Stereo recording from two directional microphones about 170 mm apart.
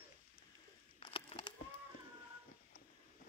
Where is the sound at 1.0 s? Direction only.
30° left (ahead or behind).